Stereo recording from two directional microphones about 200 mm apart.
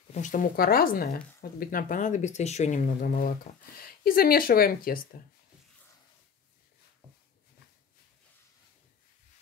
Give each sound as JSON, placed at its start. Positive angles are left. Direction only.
{"t": 0.1, "sound": "speech", "side_deg": 40}